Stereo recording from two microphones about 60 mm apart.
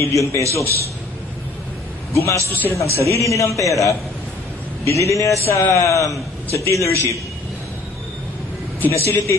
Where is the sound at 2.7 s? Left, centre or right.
Left.